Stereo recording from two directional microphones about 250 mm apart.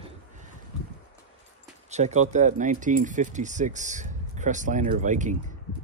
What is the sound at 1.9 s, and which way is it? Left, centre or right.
Speech, right.